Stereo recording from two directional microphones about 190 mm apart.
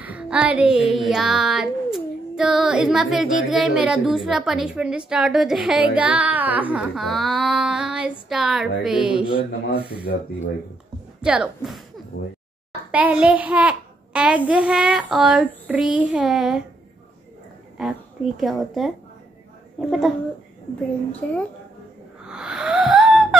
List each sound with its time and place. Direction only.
0.0 s speech: 5° right (ahead or behind)
9.7 s speech: 55° left (ahead or behind)
11.1 s speech: 5° right (ahead or behind)
12.1 s speech: 90° left
12.9 s a child's voice: 5° right (ahead or behind)
17.7 s a woman's voice: centre (ahead or behind)
22.2 s wheeze: 5° right (ahead or behind)